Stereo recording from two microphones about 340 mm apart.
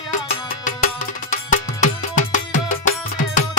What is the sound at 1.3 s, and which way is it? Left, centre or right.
Music, left.